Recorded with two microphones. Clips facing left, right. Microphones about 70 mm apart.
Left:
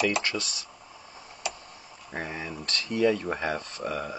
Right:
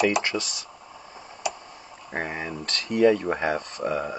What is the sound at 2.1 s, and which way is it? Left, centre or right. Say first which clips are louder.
Speech: right 4 dB; right.